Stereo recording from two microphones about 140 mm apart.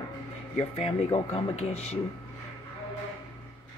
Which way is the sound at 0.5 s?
50° left (ahead or behind).